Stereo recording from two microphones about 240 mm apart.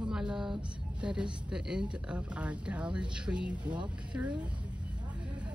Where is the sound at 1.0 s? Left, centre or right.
Centre.